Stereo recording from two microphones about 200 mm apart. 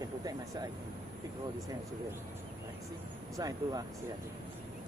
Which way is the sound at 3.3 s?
20° right (ahead or behind).